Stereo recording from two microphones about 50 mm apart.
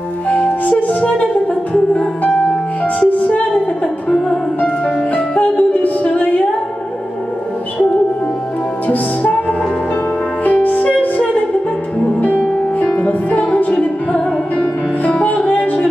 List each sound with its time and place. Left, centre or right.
0.3 s music: left
4.6 s music: left
8.8 s music: left
12.9 s music: left